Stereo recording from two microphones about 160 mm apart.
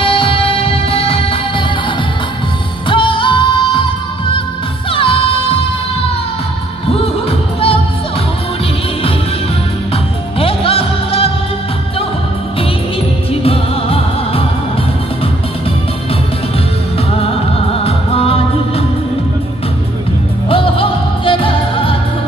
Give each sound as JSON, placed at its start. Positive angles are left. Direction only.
{"t": 0.0, "sound": "music", "side_deg": 35}
{"t": 2.9, "sound": "music", "side_deg": 30}
{"t": 6.9, "sound": "music", "side_deg": 35}
{"t": 10.4, "sound": "music", "side_deg": 35}
{"t": 13.3, "sound": "music", "side_deg": 35}
{"t": 17.7, "sound": "music", "side_deg": 35}
{"t": 20.4, "sound": "music", "side_deg": 35}